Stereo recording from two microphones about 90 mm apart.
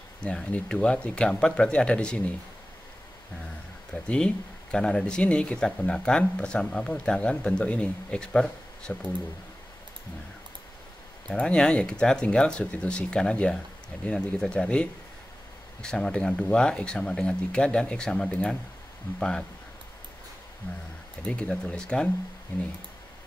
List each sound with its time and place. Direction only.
0.2 s speech: 10° left (ahead or behind)
3.9 s speech: 10° left (ahead or behind)
11.2 s speech: 10° left (ahead or behind)
21.3 s speech: 15° left (ahead or behind)